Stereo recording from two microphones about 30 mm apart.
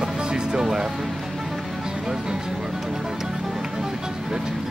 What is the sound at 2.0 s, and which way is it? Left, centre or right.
Speech, right.